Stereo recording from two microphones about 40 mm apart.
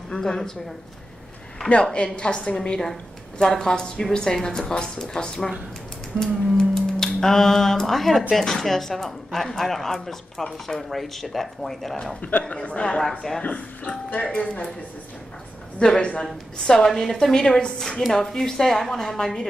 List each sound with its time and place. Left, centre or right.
0.1 s speech: centre
2.1 s speech: left
6.1 s music: centre
8.4 s speech: centre
12.3 s a man's voice: left
12.5 s speech: left
15.8 s speech: left
16.2 s speech: centre
17.8 s speech: centre